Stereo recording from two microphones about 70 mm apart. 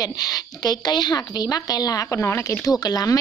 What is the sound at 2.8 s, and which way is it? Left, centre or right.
Speech, left.